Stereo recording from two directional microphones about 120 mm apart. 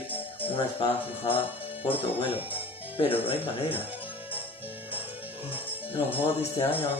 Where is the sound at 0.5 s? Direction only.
50° left (ahead or behind).